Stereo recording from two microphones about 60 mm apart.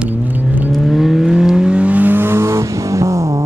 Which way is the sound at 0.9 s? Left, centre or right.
Centre.